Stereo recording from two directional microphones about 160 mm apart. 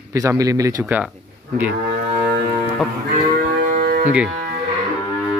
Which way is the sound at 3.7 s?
60° right (ahead or behind).